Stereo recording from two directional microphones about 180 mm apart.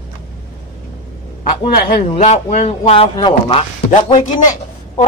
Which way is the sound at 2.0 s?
40° left (ahead or behind).